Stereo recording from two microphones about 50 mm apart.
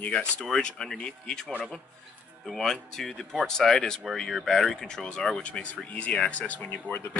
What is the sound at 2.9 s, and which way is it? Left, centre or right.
Speech, centre.